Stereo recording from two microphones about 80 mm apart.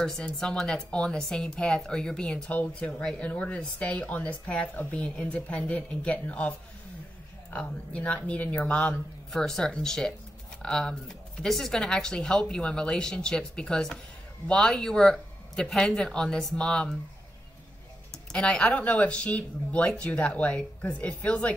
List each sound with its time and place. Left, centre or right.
0.0 s speech: centre
7.5 s speech: centre
9.3 s speech: centre
18.1 s speech: centre